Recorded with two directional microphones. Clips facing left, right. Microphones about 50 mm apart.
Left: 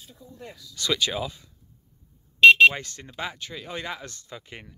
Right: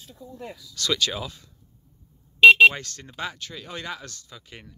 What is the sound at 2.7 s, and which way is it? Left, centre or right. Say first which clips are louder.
Speech: left 1 dB; centre.